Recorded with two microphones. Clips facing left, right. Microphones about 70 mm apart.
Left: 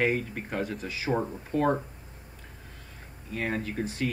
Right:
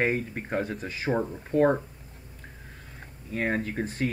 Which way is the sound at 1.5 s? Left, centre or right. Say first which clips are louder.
Right 5 dB; left.